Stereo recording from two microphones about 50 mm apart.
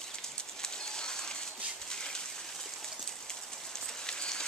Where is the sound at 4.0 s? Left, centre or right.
Centre.